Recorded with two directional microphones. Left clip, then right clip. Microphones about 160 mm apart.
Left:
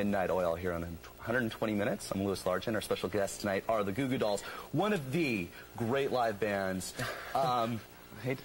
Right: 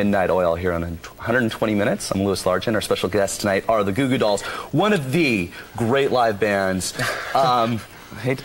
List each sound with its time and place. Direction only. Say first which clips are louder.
0.0 s speech: right 12 dB; 20° right (ahead or behind)